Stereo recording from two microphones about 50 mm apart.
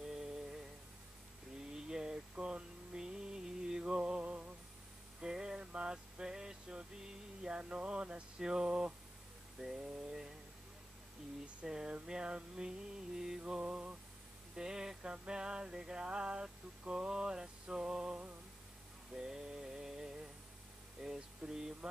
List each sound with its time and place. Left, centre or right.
0.1 s music: centre
1.9 s a sound: centre
7.4 s speech: centre
9.6 s a sound: centre
11.6 s music: centre
13.4 s mantra: right
14.6 s music: centre
19.1 s mantra: centre
21.0 s a sound: centre